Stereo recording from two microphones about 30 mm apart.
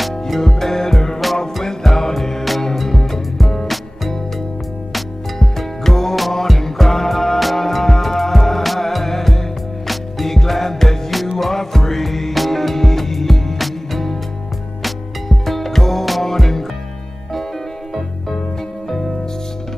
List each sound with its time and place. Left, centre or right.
0.4 s music: centre
5.9 s music: centre